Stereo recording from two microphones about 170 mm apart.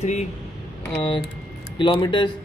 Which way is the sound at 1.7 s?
30° left (ahead or behind).